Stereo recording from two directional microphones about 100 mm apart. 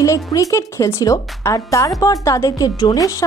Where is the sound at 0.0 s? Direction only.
35° left (ahead or behind).